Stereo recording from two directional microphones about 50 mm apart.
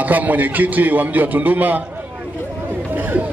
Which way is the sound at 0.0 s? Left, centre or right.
Right.